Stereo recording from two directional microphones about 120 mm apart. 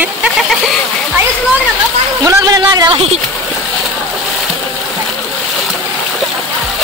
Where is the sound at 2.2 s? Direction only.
30° right (ahead or behind).